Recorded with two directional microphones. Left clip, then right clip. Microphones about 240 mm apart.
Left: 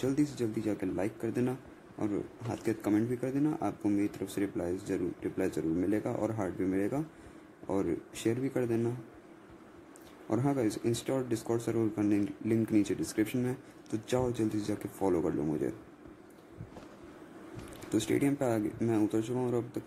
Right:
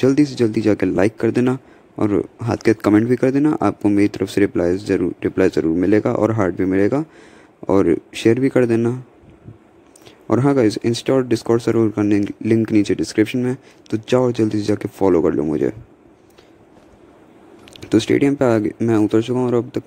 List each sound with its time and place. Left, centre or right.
0.0 s speech: right
10.2 s speech: right
17.7 s speech: right